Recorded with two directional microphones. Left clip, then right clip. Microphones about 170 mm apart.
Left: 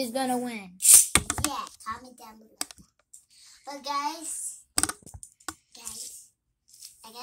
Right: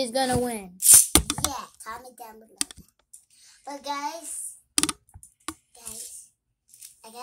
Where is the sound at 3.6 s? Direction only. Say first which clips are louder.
Right 2 dB; 60° right (ahead or behind).